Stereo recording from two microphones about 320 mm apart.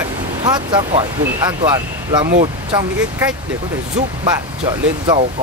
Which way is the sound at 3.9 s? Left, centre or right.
Centre.